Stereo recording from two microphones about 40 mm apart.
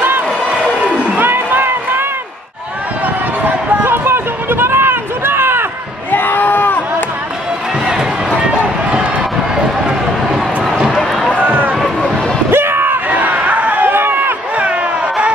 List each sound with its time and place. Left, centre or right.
0.5 s a sound: right
1.2 s run: right
3.4 s run: right
6.1 s a sound: left
7.8 s run: centre
11.3 s run: right
12.4 s a sound: right
12.8 s crowd: right
13.9 s run: right